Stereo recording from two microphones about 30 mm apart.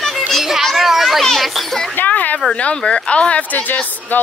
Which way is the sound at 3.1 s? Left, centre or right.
Left.